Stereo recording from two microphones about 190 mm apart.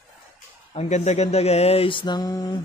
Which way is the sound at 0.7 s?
35° left (ahead or behind).